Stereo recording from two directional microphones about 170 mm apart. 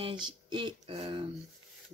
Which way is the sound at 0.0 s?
30° right (ahead or behind).